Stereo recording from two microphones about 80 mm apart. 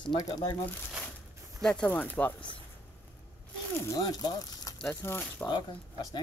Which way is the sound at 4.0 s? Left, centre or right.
Left.